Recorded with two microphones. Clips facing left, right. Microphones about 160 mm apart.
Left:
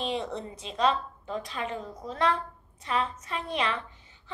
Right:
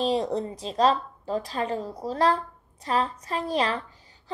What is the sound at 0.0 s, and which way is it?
A woman's voice, 35° right (ahead or behind).